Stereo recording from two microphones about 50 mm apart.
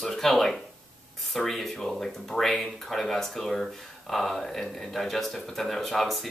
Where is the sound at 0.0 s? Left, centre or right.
Centre.